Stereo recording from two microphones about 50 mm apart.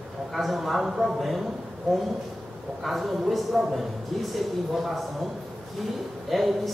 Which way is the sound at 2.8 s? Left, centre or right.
Centre.